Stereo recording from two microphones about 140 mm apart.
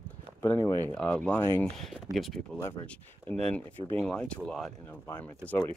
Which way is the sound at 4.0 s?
10° left (ahead or behind).